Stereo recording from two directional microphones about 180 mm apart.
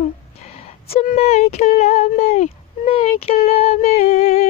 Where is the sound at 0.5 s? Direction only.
35° left (ahead or behind).